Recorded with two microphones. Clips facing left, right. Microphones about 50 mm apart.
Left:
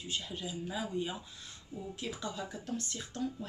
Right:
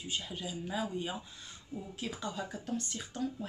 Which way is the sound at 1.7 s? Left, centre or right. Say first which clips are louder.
Even; centre.